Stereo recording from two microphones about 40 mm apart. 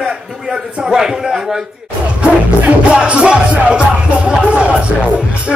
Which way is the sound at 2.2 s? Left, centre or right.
Right.